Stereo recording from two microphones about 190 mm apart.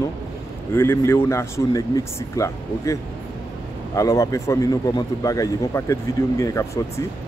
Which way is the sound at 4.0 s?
15° left (ahead or behind).